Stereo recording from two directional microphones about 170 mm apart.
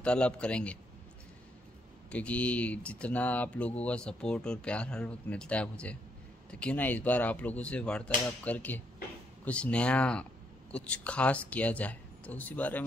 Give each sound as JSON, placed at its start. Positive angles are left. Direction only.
{"t": 0.0, "sound": "speech", "side_deg": 5}
{"t": 2.0, "sound": "speech", "side_deg": 10}